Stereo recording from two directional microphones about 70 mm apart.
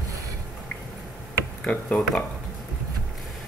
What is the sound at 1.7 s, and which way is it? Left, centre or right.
Speech, centre.